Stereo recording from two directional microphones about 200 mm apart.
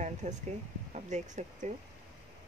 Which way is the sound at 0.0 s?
35° right (ahead or behind).